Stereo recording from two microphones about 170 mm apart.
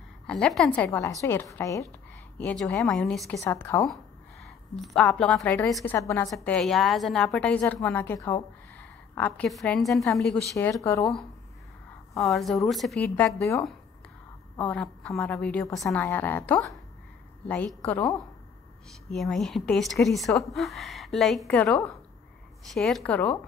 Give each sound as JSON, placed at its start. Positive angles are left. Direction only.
{"t": 0.3, "sound": "a woman's voice", "side_deg": 0}
{"t": 2.3, "sound": "a woman's voice", "side_deg": 5}
{"t": 3.3, "sound": "a woman's voice", "side_deg": 15}
{"t": 3.9, "sound": "a woman's voice", "side_deg": 0}
{"t": 6.5, "sound": "a woman's voice", "side_deg": 0}
{"t": 10.7, "sound": "a woman's voice", "side_deg": 15}
{"t": 12.2, "sound": "a woman's voice", "side_deg": 0}
{"t": 14.6, "sound": "a woman's voice", "side_deg": 5}
{"t": 19.0, "sound": "a woman's voice", "side_deg": 0}